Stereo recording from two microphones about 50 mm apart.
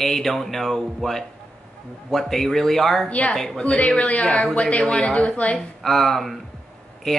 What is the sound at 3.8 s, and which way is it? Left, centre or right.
A woman's voice, left.